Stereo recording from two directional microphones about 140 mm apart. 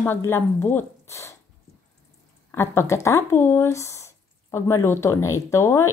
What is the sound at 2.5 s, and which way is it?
Speech, 20° left (ahead or behind).